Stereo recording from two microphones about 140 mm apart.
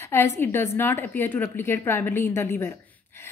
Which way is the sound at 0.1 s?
15° left (ahead or behind).